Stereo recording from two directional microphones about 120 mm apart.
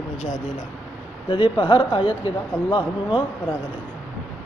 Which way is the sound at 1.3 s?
40° left (ahead or behind).